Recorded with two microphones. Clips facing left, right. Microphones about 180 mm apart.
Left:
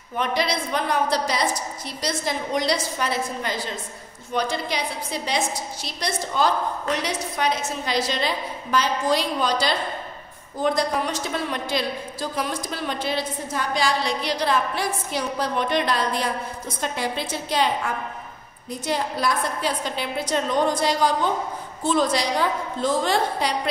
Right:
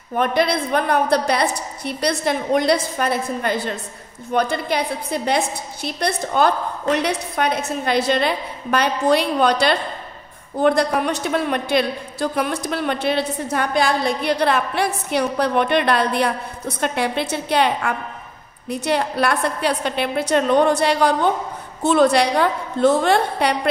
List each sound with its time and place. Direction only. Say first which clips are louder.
0.1 s a man's voice: right 6 dB; 55° right (ahead or behind)